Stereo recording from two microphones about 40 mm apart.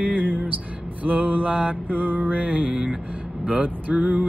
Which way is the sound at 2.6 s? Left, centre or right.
Centre.